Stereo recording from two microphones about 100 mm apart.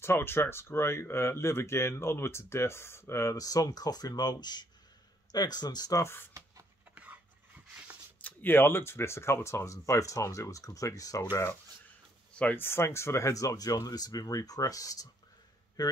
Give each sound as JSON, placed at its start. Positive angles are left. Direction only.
{"t": 0.0, "sound": "speech", "side_deg": 25}
{"t": 8.2, "sound": "speech", "side_deg": 20}
{"t": 12.4, "sound": "speech", "side_deg": 20}